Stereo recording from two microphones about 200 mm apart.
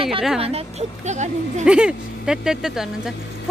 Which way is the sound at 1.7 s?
5° right (ahead or behind).